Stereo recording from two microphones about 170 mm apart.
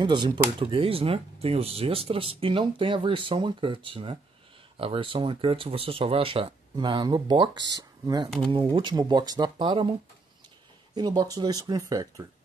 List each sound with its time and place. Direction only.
0.0 s speech: 25° right (ahead or behind)
11.0 s speech: 25° right (ahead or behind)